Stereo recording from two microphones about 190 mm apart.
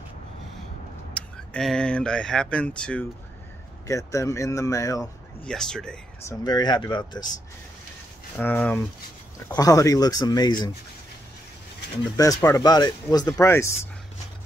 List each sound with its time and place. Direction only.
1.1 s speech: 5° left (ahead or behind)
5.4 s speech: 5° left (ahead or behind)
6.2 s speech: 20° left (ahead or behind)
8.4 s speech: 10° left (ahead or behind)
12.4 s speech: 20° left (ahead or behind)